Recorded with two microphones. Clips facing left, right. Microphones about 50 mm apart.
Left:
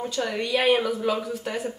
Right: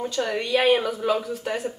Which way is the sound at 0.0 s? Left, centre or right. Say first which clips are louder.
Right 1 dB; centre.